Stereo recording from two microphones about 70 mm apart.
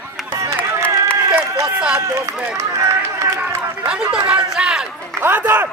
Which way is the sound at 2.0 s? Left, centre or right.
Right.